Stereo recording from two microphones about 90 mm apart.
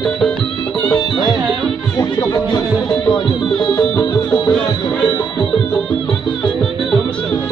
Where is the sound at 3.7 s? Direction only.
40° left (ahead or behind).